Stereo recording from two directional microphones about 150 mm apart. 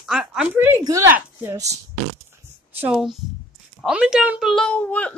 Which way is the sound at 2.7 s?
5° right (ahead or behind).